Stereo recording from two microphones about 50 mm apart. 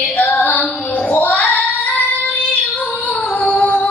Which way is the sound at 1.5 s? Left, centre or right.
Left.